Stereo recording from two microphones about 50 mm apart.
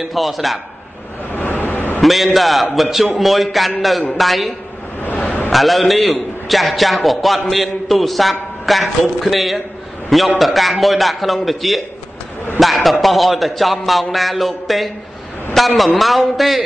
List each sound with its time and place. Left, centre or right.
0.1 s a man's voice: centre
1.3 s vehicle: left
2.0 s a man's voice: centre